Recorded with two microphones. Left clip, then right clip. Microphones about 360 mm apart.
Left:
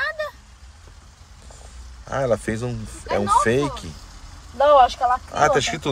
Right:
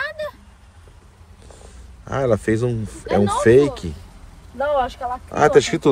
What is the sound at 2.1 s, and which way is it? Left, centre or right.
Speech, centre.